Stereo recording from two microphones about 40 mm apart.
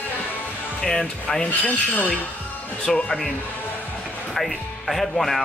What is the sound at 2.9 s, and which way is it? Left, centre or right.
Speech, centre.